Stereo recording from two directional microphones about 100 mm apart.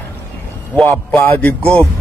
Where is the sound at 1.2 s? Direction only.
15° left (ahead or behind).